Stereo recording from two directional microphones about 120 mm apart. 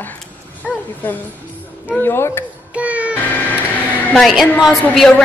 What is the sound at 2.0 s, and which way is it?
Speech, 20° left (ahead or behind).